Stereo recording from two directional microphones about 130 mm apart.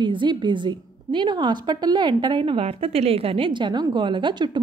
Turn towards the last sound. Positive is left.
turn(degrees=-35)  # may be behind; listen again after turning